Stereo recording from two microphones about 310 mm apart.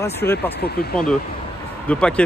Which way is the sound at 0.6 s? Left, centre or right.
Left.